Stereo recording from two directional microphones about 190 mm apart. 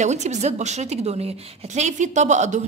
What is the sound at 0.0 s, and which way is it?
A woman's voice, 35° right (ahead or behind).